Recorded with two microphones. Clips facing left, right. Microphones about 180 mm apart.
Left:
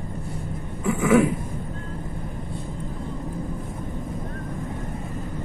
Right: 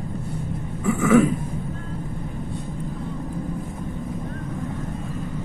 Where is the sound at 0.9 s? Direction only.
20° left (ahead or behind).